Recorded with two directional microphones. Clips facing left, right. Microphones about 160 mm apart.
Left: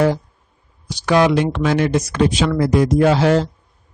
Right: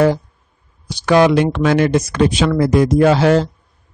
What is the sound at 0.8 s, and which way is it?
Speech, 55° right (ahead or behind).